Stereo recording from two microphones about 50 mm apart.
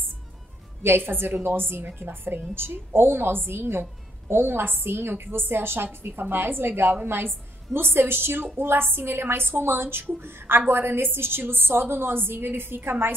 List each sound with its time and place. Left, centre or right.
0.8 s a woman's voice: right